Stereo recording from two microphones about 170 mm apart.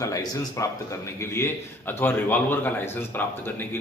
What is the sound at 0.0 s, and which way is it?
Speech, 20° left (ahead or behind).